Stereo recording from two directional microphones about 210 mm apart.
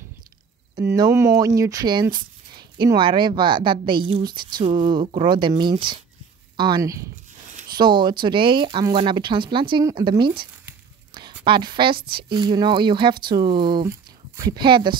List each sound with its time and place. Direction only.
0.7 s speech: 20° right (ahead or behind)